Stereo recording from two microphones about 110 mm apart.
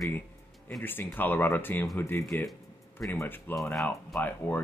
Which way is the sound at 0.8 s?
20° left (ahead or behind).